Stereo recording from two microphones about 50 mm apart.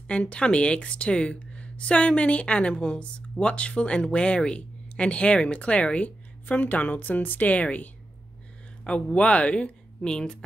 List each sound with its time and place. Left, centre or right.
0.1 s a woman's voice: left